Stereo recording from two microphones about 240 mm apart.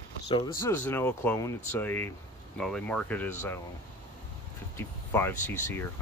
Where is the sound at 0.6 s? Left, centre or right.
Centre.